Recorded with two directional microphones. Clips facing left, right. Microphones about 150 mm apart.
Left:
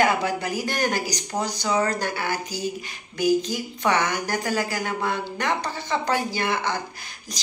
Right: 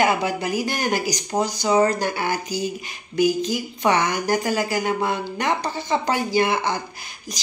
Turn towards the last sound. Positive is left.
turn(degrees=-15)  # may be behind; listen again after turning